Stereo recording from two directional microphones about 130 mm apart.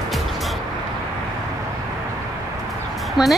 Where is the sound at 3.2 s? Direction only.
5° right (ahead or behind).